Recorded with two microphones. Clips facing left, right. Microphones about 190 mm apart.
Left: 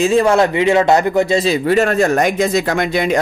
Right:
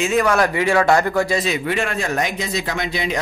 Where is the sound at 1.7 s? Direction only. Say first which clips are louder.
Left 9 dB; 45° left (ahead or behind).